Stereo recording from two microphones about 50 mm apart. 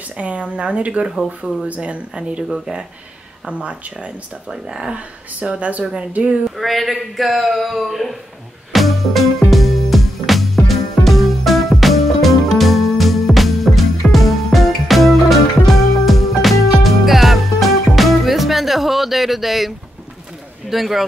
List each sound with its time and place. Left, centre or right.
0.2 s speech: right
1.0 s speech: centre
1.7 s speech: right
2.5 s speech: centre
3.4 s speech: right
4.5 s speech: centre
4.9 s speech: right
6.5 s speech: centre
8.7 s music: centre
20.7 s speech: centre